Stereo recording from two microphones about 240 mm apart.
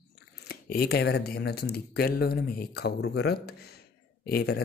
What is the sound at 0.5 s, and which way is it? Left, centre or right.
A man's voice, left.